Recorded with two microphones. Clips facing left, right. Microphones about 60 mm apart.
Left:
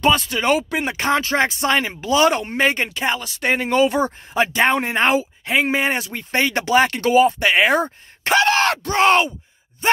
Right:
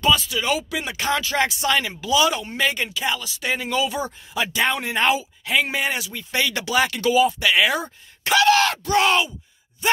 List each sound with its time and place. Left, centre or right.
0.0 s speech: left